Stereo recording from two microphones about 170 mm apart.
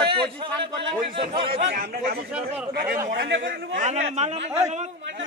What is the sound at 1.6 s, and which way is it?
Speech, 60° right (ahead or behind).